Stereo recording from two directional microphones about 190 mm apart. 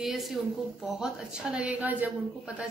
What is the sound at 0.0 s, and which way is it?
A woman's voice, centre (ahead or behind).